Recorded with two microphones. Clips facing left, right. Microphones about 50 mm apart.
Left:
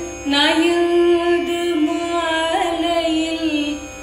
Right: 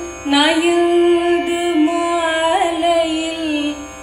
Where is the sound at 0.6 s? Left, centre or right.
Right.